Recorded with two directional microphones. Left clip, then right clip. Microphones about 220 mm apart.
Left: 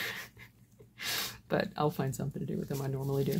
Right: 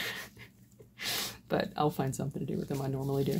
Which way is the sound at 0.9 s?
5° left (ahead or behind).